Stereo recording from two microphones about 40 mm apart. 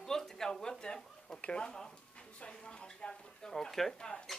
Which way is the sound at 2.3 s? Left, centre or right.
Left.